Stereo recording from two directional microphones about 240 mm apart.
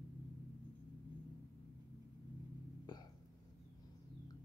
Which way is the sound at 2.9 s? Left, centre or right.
Centre.